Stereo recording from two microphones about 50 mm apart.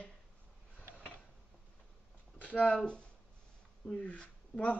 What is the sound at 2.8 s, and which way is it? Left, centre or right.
Speech, centre.